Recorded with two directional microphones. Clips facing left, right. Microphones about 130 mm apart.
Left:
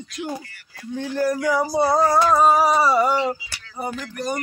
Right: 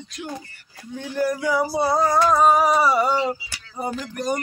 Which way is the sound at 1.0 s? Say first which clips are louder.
Left 1 dB; 10° right (ahead or behind).